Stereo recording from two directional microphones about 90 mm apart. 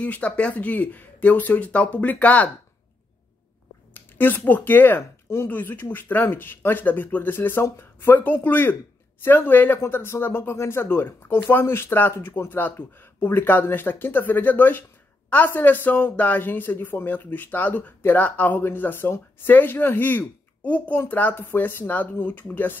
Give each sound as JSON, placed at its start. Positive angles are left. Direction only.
{"t": 0.0, "sound": "speech", "side_deg": 15}
{"t": 3.9, "sound": "speech", "side_deg": 20}